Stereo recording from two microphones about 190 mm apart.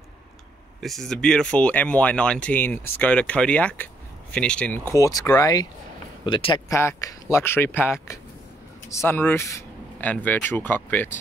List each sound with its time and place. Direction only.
0.7 s speech: centre (ahead or behind)